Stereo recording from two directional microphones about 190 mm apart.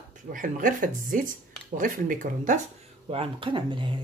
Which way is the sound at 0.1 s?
45° right (ahead or behind).